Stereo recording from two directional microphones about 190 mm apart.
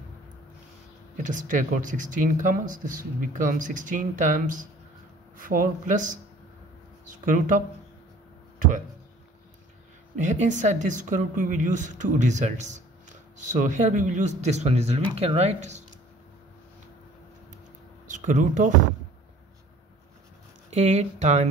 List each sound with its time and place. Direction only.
1.1 s speech: 40° right (ahead or behind)
7.2 s speech: 45° right (ahead or behind)
10.1 s speech: 40° right (ahead or behind)
18.0 s speech: 40° right (ahead or behind)
20.7 s speech: 35° right (ahead or behind)